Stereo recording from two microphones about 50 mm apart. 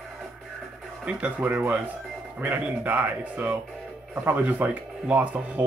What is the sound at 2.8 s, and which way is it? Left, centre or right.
Speech, right.